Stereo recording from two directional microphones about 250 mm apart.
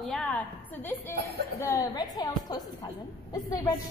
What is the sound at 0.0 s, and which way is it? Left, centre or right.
A woman's voice, centre.